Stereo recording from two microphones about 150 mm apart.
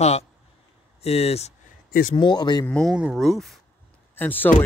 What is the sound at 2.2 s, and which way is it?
Speech, 30° left (ahead or behind).